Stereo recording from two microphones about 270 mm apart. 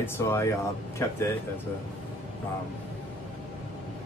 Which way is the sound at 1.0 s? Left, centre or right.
Centre.